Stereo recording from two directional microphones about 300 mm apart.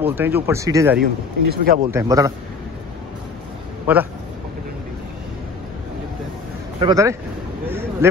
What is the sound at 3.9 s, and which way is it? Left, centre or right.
Speech, centre.